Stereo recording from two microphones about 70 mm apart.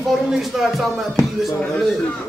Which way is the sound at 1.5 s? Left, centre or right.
Centre.